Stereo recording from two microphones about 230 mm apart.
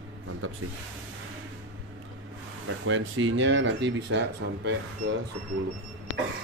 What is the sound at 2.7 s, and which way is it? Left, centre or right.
Speech, right.